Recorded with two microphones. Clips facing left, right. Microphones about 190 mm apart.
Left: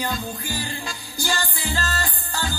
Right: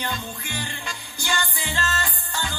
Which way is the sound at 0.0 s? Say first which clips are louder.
Left 3 dB; 35° left (ahead or behind).